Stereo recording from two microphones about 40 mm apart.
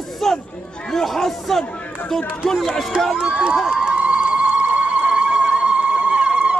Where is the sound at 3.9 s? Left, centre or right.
Right.